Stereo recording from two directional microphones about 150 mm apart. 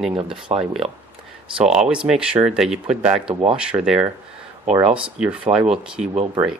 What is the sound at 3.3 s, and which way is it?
Speech, 35° right (ahead or behind).